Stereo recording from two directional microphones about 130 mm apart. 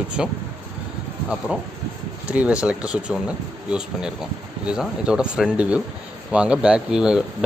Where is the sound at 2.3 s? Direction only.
10° right (ahead or behind).